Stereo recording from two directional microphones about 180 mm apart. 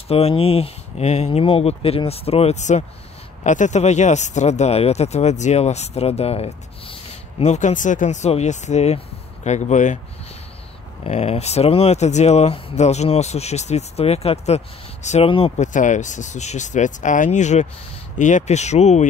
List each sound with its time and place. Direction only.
0.1 s speech: 35° left (ahead or behind)
11.1 s speech: 35° left (ahead or behind)